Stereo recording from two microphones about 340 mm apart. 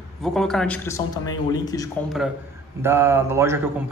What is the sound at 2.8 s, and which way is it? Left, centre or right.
Speech, centre.